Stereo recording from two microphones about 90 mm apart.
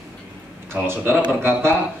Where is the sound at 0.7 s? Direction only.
25° right (ahead or behind).